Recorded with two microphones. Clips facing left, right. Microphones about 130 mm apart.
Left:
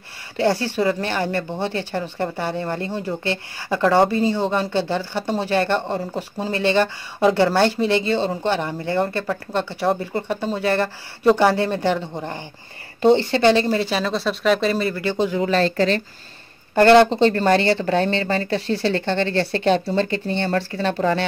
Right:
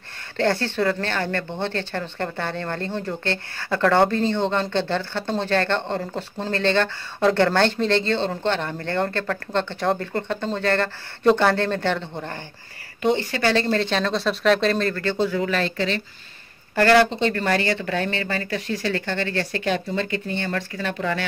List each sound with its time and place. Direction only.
0.4 s speech: 10° left (ahead or behind)
13.0 s speech: 30° left (ahead or behind)
15.4 s speech: 35° left (ahead or behind)
16.7 s speech: 25° left (ahead or behind)